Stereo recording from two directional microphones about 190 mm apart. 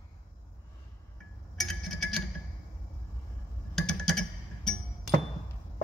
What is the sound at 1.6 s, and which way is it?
Tick-tock, centre (ahead or behind).